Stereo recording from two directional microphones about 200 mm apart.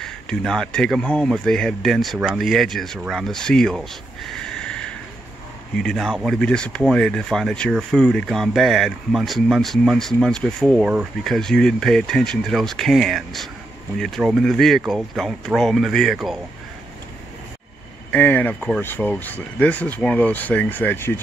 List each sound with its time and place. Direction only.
0.0 s speech: centre (ahead or behind)
18.1 s speech: 10° left (ahead or behind)